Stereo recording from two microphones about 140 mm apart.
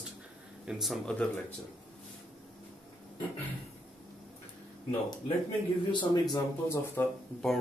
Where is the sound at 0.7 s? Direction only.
Centre (ahead or behind).